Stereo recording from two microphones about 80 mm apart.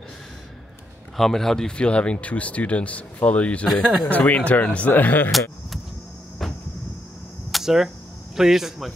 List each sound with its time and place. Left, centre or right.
1.1 s speech: centre; by 5.3 s left
6.4 s a sound: centre
8.4 s speech: centre